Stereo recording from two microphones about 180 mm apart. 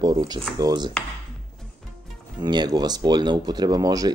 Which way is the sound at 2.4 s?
25° right (ahead or behind).